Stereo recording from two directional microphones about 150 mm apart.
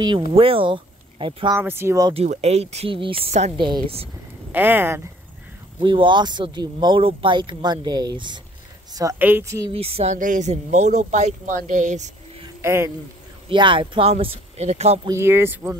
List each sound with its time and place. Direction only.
0.3 s speech: 40° right (ahead or behind)
1.5 s speech: 15° right (ahead or behind)
2.1 s speech: 45° right (ahead or behind)
4.5 s speech: 10° right (ahead or behind)
5.8 s speech: 35° right (ahead or behind)
9.2 s a woman's voice: 15° right (ahead or behind)
9.7 s speech: 40° right (ahead or behind)
10.1 s speech: 60° right (ahead or behind)
12.6 s speech: 15° right (ahead or behind)
13.5 s speech: 35° right (ahead or behind)
15.0 s speech: 15° right (ahead or behind)